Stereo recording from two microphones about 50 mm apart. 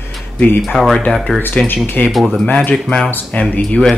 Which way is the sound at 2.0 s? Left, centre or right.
Left.